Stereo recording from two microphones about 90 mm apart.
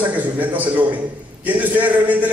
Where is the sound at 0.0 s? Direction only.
20° right (ahead or behind).